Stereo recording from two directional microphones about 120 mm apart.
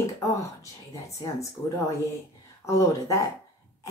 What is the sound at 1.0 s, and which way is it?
Speech, 25° left (ahead or behind).